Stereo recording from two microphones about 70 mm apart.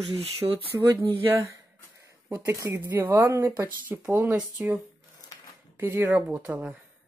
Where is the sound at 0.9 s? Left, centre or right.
Right.